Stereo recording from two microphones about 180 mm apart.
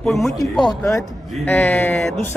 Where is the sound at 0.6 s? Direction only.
15° left (ahead or behind).